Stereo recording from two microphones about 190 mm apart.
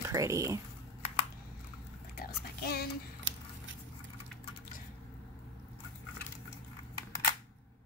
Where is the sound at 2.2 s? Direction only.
55° left (ahead or behind).